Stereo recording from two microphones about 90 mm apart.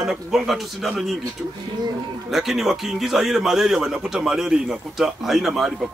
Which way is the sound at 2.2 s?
5° right (ahead or behind).